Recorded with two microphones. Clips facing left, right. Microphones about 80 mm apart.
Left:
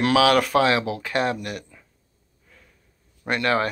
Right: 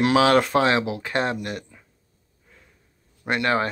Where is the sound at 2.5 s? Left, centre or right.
Right.